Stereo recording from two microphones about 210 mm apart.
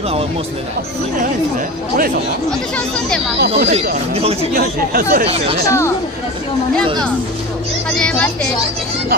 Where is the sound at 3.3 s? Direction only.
50° right (ahead or behind).